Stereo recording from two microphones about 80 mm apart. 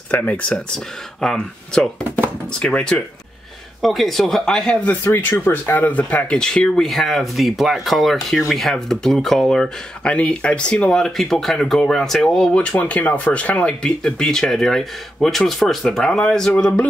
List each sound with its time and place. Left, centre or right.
0.1 s speech: centre
1.2 s speech: centre
4.8 s speech: left